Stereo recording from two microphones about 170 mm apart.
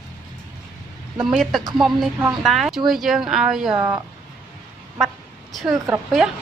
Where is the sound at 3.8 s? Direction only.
20° right (ahead or behind).